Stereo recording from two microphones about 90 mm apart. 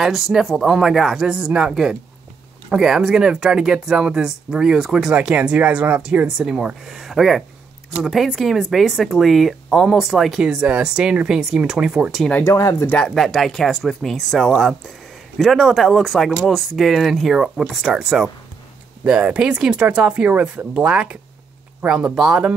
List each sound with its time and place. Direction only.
0.0 s speech: 5° right (ahead or behind)
12.4 s speech: 35° left (ahead or behind)
13.0 s speech: 5° left (ahead or behind)